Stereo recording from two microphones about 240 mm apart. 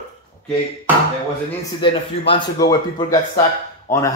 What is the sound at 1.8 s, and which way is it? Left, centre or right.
Speech, centre.